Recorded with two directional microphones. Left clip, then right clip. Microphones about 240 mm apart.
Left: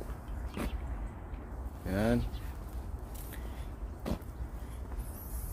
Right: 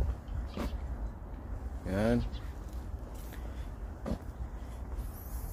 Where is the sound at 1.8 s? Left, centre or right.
Centre.